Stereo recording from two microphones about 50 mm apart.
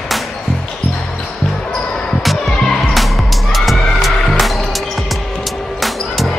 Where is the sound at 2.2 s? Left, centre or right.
Centre.